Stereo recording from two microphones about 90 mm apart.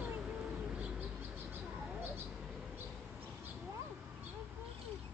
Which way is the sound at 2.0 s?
25° right (ahead or behind).